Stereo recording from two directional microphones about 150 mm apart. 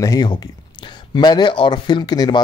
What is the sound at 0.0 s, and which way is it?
Speech, 25° left (ahead or behind).